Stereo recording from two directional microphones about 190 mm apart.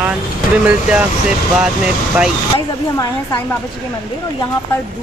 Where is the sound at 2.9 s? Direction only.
20° left (ahead or behind).